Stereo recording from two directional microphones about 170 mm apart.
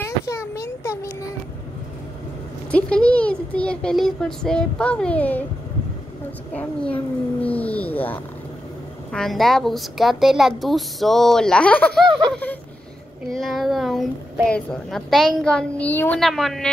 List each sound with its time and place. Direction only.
0.0 s a sound: 15° left (ahead or behind)
2.7 s a child's voice: 5° left (ahead or behind)
6.5 s a child's voice: 10° left (ahead or behind)